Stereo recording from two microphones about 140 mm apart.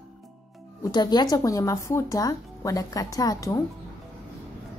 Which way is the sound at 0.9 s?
30° left (ahead or behind).